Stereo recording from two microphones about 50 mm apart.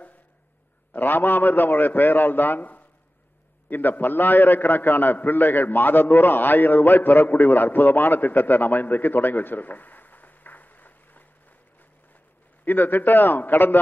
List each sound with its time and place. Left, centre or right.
0.9 s a man's voice: left
12.6 s a man's voice: left